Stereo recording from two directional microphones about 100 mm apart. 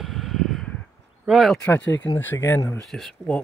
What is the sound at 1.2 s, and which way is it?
Speech, 5° right (ahead or behind).